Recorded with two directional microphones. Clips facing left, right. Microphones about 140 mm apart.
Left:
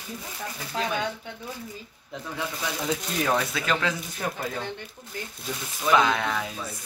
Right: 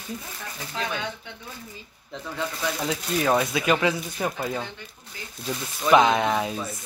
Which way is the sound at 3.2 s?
15° right (ahead or behind).